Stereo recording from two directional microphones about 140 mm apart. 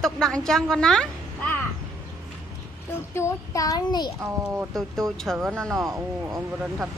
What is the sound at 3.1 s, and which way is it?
Speech, 20° left (ahead or behind).